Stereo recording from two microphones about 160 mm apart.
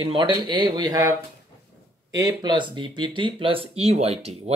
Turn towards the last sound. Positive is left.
turn(degrees=-40)  # may be behind; listen again after turning